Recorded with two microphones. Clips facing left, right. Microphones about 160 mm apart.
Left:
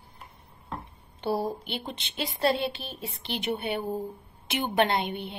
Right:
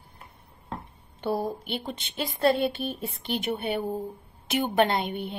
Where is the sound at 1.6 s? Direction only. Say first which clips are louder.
Right 3 dB; 45° right (ahead or behind).